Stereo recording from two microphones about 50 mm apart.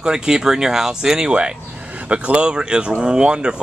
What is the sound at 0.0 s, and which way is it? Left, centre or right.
Speech, centre.